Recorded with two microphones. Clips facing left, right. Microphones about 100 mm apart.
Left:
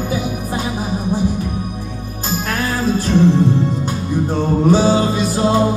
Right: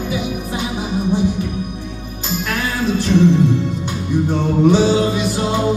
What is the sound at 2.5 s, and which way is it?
Music, 40° left (ahead or behind).